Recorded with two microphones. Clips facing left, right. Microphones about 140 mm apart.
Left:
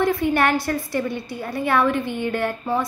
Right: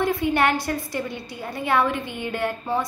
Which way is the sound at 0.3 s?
20° right (ahead or behind).